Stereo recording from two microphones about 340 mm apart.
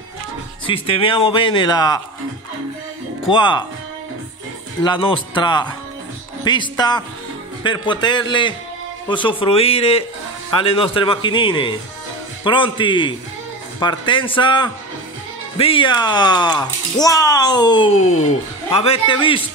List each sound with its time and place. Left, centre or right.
0.7 s speech: centre
3.3 s speech: centre
4.8 s speech: centre